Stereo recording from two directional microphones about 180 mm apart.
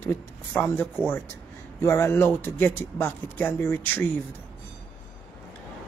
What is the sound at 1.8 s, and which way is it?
Speech, 15° left (ahead or behind).